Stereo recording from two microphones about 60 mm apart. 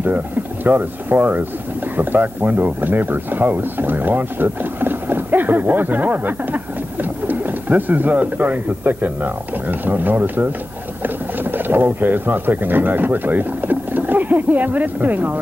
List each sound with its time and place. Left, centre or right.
0.7 s speech: right
11.5 s speech: right